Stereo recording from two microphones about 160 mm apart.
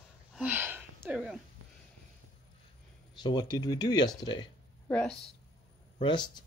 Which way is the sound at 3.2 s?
25° left (ahead or behind).